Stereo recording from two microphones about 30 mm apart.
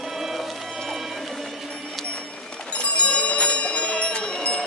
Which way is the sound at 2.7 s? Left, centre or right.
Left.